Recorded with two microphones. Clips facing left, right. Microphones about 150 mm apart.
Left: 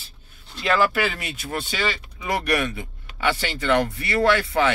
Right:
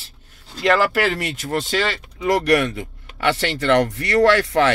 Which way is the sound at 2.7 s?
70° right (ahead or behind).